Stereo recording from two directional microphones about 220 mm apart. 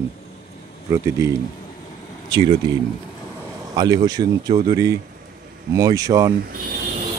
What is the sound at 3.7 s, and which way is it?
Speech, 15° right (ahead or behind).